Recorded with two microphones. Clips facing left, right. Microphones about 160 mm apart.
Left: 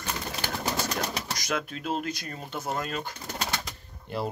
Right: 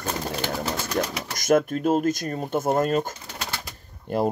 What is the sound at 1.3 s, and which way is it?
Speech, 50° right (ahead or behind).